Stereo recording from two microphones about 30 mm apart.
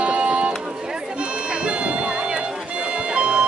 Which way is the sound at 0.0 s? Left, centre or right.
Right.